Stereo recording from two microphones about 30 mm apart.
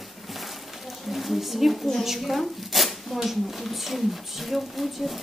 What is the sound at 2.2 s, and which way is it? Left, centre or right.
Speech, centre.